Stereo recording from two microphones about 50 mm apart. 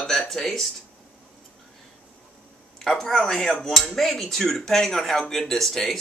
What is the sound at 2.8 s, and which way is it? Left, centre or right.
Speech, centre.